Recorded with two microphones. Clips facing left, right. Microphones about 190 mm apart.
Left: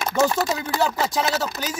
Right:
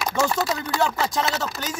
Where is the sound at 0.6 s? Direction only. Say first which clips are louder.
Left 1 dB; 5° left (ahead or behind).